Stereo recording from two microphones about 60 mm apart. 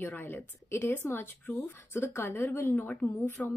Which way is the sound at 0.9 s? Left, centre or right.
Left.